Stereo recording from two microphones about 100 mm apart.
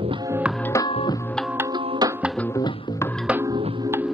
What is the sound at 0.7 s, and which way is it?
Music, 35° left (ahead or behind).